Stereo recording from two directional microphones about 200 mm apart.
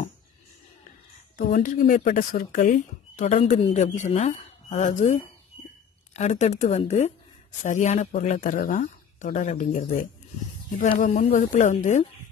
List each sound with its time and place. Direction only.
0.8 s a woman's voice: 45° left (ahead or behind)
5.5 s a sound: 25° left (ahead or behind)
6.1 s speech: 35° left (ahead or behind)